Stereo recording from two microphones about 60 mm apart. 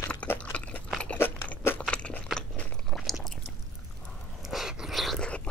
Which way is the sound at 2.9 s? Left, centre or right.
Centre.